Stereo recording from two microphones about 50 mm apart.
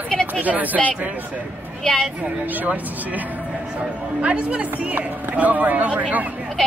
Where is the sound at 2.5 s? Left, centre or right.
Right.